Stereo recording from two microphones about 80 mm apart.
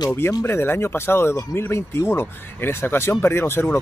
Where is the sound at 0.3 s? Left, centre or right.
Left.